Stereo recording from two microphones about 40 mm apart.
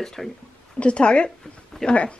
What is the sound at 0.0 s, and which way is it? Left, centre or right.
Speech, centre.